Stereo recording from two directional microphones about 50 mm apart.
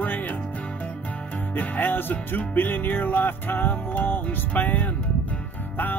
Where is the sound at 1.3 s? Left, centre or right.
Left.